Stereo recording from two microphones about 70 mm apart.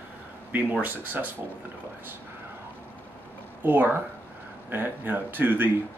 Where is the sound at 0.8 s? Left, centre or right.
Right.